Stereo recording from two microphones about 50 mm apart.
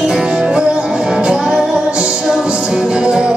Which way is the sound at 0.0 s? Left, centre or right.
Centre.